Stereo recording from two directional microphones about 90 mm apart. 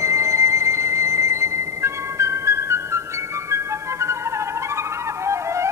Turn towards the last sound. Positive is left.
turn(degrees=-30)  # may be behind; listen again after turning